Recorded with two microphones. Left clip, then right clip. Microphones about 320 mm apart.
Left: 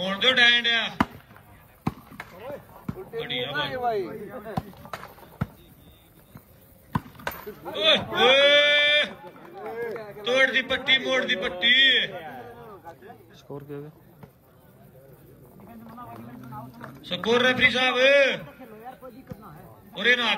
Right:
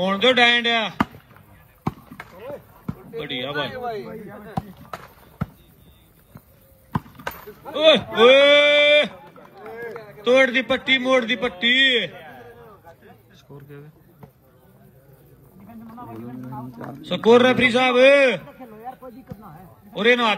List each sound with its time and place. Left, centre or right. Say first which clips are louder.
0.0 s a man's voice: right 3 dB; centre
1.9 s basketball bounce: right 3 dB; centre
2.4 s chop: right 3 dB; centre
3.2 s a man's voice: right 2 dB; centre
3.7 s a man's voice: left 3 dB; left
7.7 s a man's voice: right 6 dB; centre
9.6 s run: left 2 dB; left
10.2 s a man's voice: right 5 dB; centre
12.1 s a sound: left 3 dB; left
13.6 s a man's voice: left 5 dB; centre
16.4 s a man's voice: right 3 dB; centre